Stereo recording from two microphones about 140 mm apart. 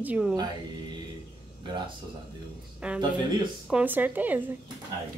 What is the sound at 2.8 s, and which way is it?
A woman's voice, 5° right (ahead or behind).